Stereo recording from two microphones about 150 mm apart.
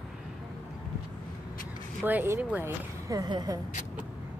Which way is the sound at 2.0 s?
15° right (ahead or behind).